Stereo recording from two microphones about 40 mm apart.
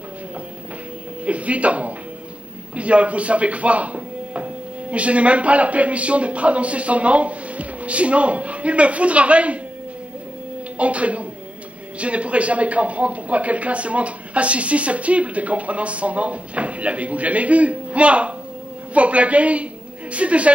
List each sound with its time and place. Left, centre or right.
1.2 s speech: right
10.8 s a woman's voice: right